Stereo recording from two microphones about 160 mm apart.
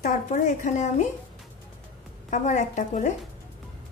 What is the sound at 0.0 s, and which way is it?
A woman's voice, 50° left (ahead or behind).